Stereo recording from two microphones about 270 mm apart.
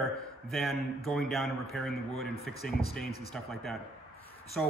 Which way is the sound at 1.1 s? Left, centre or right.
Centre.